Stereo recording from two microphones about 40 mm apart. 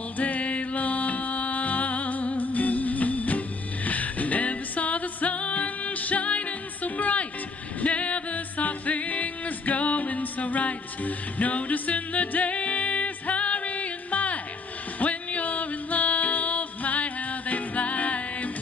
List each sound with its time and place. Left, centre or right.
0.2 s music: left